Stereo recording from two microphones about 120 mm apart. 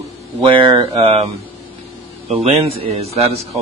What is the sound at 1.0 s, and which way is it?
Speech, 60° right (ahead or behind).